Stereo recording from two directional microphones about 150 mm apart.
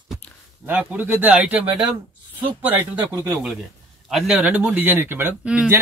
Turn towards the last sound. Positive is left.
turn(degrees=-10)  # may be behind; listen again after turning